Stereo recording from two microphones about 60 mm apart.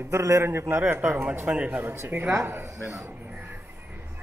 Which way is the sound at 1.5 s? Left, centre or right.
Centre.